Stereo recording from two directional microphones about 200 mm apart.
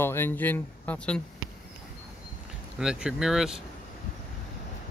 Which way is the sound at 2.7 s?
5° right (ahead or behind).